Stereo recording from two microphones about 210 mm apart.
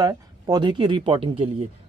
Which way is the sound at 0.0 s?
20° right (ahead or behind).